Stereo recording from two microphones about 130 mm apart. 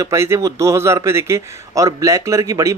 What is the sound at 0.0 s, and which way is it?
A man's voice, 20° right (ahead or behind).